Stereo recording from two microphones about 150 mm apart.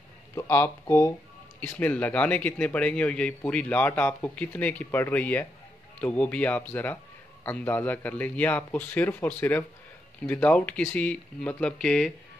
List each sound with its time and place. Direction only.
0.3 s a man's voice: 20° left (ahead or behind)